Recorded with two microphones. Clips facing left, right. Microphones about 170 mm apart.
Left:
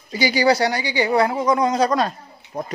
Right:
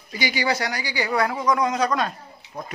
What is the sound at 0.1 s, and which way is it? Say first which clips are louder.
Speech: left 7 dB; 35° left (ahead or behind).